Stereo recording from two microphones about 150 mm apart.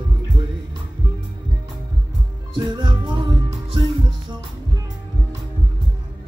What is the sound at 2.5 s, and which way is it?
Music, 30° right (ahead or behind).